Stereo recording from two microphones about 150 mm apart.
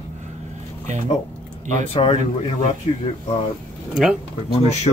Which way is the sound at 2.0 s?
35° left (ahead or behind).